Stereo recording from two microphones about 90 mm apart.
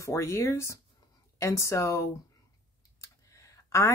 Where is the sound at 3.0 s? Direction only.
35° left (ahead or behind).